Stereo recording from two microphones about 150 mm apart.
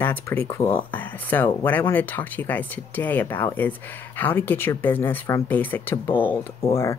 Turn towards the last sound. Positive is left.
turn(degrees=10)  # may be behind; listen again after turning